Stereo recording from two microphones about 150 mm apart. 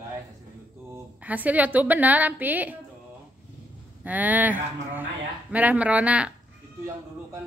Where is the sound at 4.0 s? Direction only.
10° right (ahead or behind).